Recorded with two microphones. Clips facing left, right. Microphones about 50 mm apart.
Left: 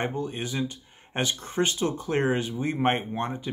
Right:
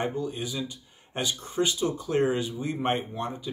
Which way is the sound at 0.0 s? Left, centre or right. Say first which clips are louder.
Even; left.